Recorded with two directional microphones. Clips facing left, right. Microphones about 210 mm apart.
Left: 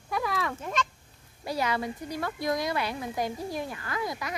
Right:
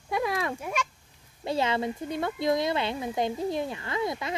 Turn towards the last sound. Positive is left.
turn(degrees=-25)  # may be behind; listen again after turning